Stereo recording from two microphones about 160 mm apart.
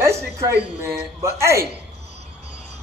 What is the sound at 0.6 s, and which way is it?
Speech, 15° right (ahead or behind).